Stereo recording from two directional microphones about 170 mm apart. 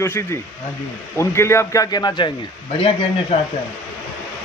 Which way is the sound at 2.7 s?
35° left (ahead or behind).